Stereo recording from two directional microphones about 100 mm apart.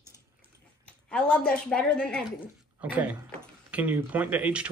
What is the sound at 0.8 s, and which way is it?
Speech, 10° left (ahead or behind).